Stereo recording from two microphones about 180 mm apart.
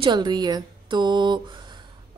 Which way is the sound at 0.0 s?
25° right (ahead or behind).